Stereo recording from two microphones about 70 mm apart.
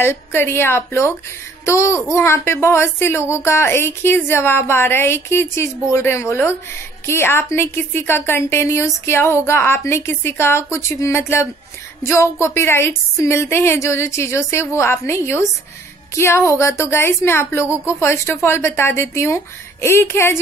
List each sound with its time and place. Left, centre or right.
0.0 s a child's voice: left